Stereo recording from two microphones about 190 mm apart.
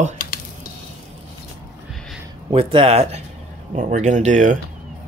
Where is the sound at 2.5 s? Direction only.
30° right (ahead or behind).